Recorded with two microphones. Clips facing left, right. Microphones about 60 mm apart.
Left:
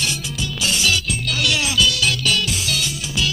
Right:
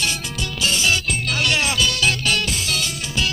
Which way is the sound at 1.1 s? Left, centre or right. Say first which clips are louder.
Right 1 dB; right.